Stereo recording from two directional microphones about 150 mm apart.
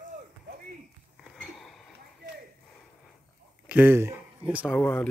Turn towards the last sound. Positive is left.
turn(degrees=10)  # may be behind; listen again after turning